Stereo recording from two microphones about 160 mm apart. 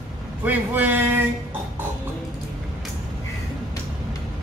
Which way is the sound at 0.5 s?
10° right (ahead or behind).